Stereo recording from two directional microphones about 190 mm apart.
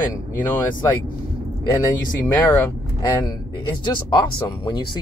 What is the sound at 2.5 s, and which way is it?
Speech, 10° left (ahead or behind).